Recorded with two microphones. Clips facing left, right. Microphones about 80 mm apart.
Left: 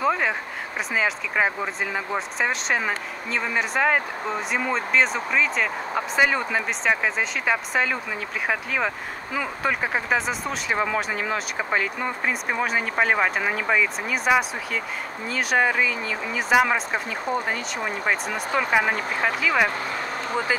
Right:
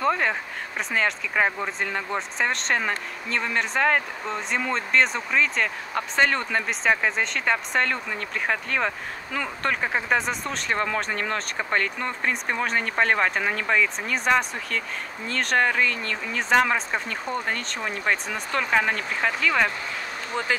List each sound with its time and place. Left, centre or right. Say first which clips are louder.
0.0 s speech: left 1 dB; centre